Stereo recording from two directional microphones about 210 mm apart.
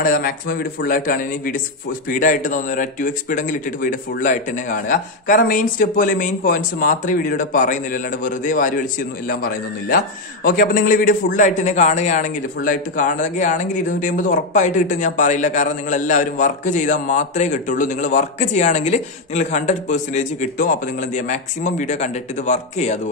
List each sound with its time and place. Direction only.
0.0 s a man's voice: 45° left (ahead or behind)